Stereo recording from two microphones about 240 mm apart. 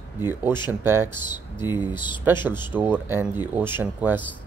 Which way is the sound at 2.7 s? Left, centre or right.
Centre.